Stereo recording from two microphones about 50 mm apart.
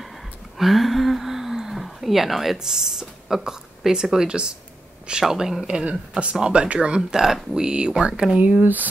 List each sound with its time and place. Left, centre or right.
0.6 s speech: centre
5.7 s speech: right
7.0 s speech: centre
8.4 s speech: right